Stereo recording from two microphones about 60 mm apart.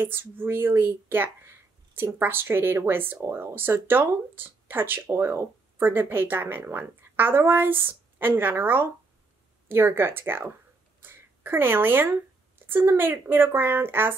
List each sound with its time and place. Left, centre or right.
0.0 s speech: right